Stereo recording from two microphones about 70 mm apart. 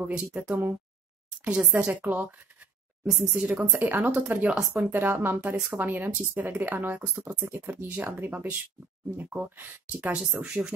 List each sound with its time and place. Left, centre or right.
0.0 s speech: centre
0.5 s speech: right
1.4 s speech: centre